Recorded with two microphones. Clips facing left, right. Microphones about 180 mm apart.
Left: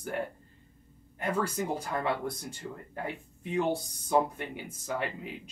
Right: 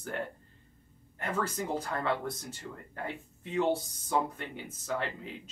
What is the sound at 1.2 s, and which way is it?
Speech, 10° left (ahead or behind).